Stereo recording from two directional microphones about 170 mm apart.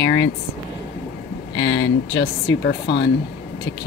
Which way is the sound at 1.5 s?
90° left.